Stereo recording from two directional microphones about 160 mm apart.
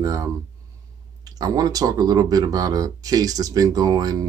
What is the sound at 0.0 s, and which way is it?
Speech, 20° right (ahead or behind).